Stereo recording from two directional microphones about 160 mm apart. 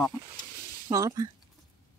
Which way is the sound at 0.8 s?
20° right (ahead or behind).